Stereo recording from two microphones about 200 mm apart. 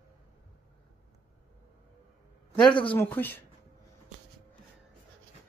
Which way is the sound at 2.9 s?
10° left (ahead or behind).